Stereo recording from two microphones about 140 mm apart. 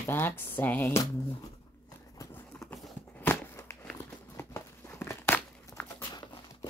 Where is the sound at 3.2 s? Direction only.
15° left (ahead or behind).